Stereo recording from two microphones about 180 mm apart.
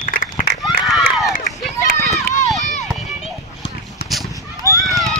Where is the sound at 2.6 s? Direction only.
40° left (ahead or behind).